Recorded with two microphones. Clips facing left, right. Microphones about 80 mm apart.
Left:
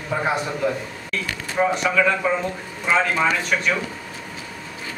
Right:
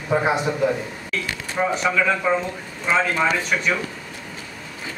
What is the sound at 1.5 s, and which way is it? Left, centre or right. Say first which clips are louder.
A man's voice: left 1 dB; centre.